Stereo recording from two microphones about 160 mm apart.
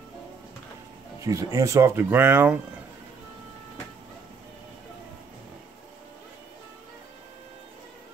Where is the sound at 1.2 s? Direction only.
20° right (ahead or behind).